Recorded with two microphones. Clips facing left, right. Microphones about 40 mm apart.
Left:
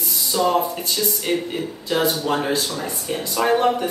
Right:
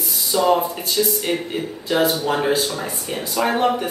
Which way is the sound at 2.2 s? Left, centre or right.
Centre.